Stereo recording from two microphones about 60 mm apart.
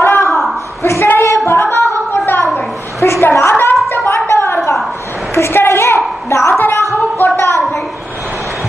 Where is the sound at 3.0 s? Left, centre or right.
Left.